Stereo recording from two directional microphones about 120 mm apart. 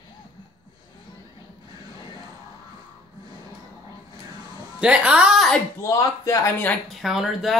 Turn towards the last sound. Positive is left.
turn(degrees=-5)  # may be behind; listen again after turning